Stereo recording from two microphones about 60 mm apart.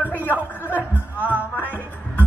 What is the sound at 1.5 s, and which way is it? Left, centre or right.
Music, left.